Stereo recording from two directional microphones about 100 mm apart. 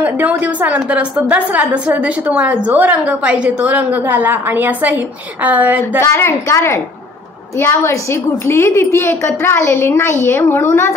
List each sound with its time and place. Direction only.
0.0 s a woman's voice: 15° right (ahead or behind)
6.1 s a woman's voice: 30° left (ahead or behind)